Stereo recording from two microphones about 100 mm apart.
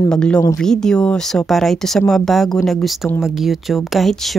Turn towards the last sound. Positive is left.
turn(degrees=0)  # may be behind; listen again after turning